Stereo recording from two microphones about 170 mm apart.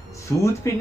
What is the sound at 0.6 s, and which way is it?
Speech, 15° left (ahead or behind).